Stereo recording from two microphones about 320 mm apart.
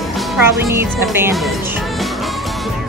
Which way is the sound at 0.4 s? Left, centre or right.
Centre.